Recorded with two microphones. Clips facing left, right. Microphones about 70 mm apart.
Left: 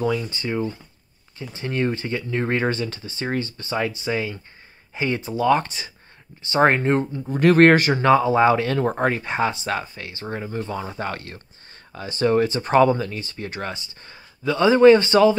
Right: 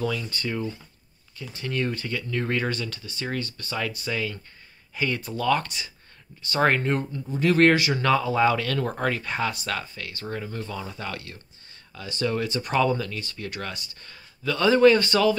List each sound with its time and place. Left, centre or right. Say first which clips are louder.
0.0 s speech: left 5 dB; left
7.2 s speech: left 5 dB; left
8.0 s speech: left 5 dB; left